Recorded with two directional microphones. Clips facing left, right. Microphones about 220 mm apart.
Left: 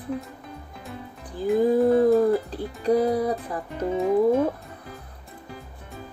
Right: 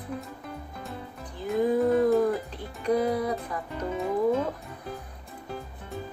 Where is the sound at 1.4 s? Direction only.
35° left (ahead or behind).